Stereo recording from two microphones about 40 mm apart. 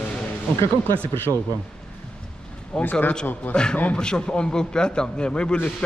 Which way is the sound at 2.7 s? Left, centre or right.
Centre.